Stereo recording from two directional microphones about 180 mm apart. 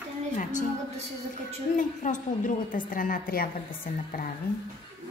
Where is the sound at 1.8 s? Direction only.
45° left (ahead or behind).